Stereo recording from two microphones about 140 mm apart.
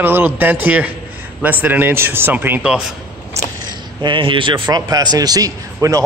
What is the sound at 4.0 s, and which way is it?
A man's voice, 35° right (ahead or behind).